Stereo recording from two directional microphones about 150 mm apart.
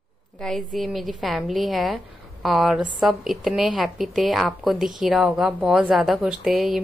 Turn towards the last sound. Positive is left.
turn(degrees=0)  # may be behind; listen again after turning